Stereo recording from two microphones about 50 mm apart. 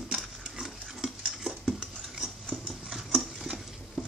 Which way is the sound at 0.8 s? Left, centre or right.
Centre.